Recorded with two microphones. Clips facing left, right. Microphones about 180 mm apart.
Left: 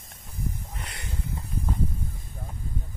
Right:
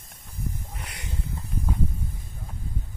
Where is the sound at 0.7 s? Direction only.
10° right (ahead or behind).